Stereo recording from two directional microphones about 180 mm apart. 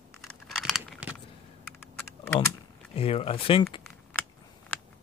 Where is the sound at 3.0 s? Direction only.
35° left (ahead or behind).